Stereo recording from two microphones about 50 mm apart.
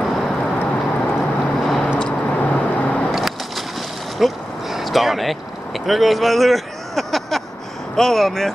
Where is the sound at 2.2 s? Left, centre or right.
Left.